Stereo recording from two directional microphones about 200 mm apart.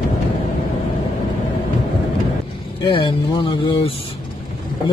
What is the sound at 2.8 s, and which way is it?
Speech, 25° left (ahead or behind).